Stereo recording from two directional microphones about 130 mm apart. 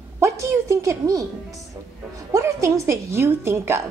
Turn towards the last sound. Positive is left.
turn(degrees=-20)  # may be behind; listen again after turning